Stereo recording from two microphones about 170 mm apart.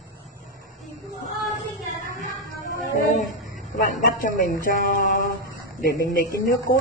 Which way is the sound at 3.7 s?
50° left (ahead or behind).